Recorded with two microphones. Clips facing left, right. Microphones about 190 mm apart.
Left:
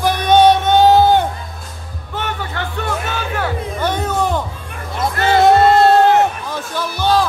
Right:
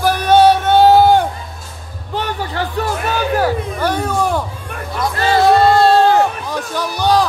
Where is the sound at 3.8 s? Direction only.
10° right (ahead or behind).